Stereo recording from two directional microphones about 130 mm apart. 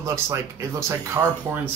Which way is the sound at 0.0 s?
20° right (ahead or behind).